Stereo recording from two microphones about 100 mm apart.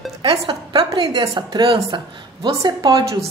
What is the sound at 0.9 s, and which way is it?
A woman's voice, 60° right (ahead or behind).